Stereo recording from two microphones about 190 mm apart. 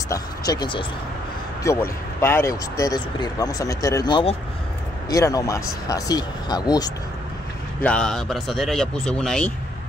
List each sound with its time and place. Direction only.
0.1 s speech: 20° left (ahead or behind)
1.6 s speech: 15° left (ahead or behind)
7.8 s speech: 5° left (ahead or behind)